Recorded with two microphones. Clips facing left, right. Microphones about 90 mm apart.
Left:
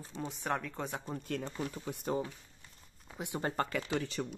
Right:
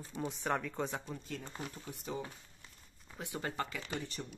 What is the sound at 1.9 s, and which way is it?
Speech, 75° left (ahead or behind).